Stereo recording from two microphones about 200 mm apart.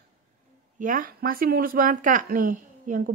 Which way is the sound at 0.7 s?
45° right (ahead or behind).